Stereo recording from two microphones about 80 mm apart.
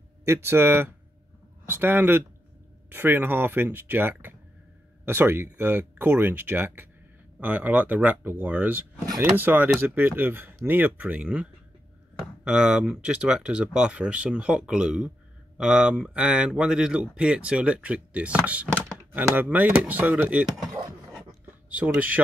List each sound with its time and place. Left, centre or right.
0.2 s speech: right; by 11.4 s centre
12.4 s speech: centre
21.2 s a sound: centre